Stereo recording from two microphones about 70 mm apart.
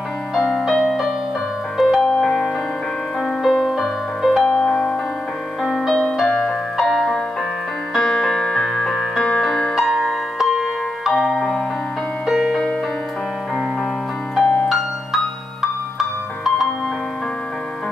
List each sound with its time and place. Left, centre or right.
0.3 s music: centre
2.2 s music: centre
3.2 s music: centre
4.6 s music: centre
14.4 s music: centre
15.6 s music: centre